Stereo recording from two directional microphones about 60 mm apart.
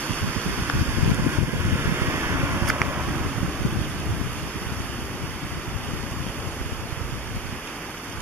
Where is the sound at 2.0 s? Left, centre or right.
Right.